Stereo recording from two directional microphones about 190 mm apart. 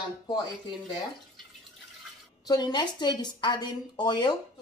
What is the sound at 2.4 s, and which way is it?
A woman's voice, 20° left (ahead or behind).